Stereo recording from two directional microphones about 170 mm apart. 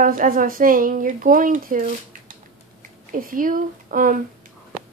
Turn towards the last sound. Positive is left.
turn(degrees=-55)  # may be behind; listen again after turning